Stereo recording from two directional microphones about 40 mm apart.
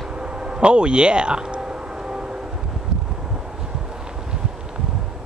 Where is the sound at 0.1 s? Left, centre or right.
Right.